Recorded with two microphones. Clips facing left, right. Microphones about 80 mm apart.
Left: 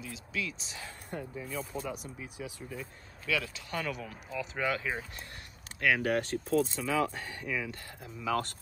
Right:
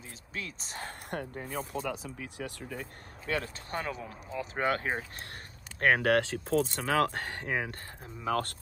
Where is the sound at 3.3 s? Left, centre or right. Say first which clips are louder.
Even; right.